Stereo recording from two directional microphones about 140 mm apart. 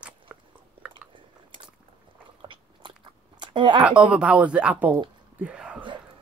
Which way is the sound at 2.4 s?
35° right (ahead or behind).